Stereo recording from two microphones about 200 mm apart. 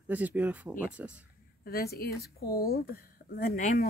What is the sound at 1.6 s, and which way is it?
A woman's voice, 50° left (ahead or behind).